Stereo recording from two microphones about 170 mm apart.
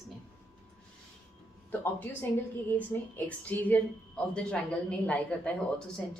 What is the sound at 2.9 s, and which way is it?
A woman's voice, 10° left (ahead or behind).